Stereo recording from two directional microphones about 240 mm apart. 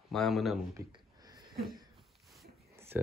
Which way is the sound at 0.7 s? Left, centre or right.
Centre.